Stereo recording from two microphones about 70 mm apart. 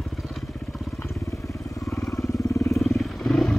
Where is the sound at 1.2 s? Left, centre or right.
Left.